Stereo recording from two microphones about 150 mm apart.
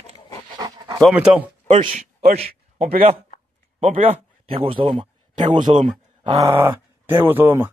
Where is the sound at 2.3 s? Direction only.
45° right (ahead or behind).